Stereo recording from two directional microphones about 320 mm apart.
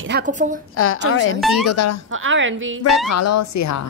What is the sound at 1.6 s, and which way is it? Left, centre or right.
Speech, left.